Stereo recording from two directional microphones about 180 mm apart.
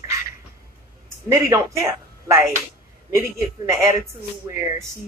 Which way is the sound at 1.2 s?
15° right (ahead or behind).